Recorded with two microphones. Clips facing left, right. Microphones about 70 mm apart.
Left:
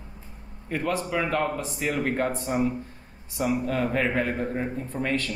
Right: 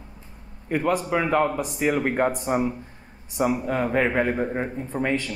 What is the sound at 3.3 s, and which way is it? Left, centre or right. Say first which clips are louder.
Speech: right 2 dB; centre.